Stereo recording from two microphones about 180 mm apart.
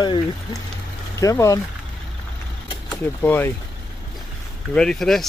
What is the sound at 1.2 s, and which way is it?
Speech, 20° left (ahead or behind).